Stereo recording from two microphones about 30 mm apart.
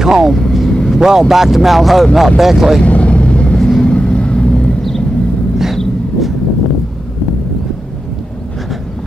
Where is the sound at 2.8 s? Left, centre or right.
Left.